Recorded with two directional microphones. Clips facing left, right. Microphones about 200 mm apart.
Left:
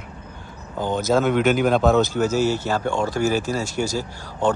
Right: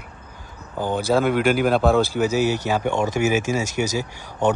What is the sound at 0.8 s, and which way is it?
Speech, 10° right (ahead or behind).